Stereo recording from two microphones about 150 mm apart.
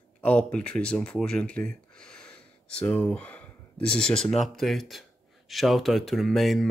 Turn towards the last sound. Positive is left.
turn(degrees=0)  # may be behind; listen again after turning